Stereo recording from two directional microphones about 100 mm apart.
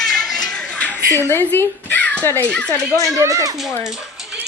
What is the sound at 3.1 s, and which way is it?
Speech, 35° right (ahead or behind).